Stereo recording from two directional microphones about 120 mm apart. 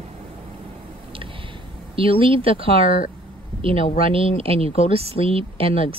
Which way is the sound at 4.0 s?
50° right (ahead or behind).